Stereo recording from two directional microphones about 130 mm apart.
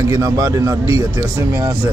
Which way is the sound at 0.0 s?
25° right (ahead or behind).